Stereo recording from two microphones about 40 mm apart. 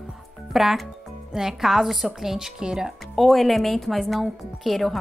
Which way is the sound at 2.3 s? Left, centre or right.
Centre.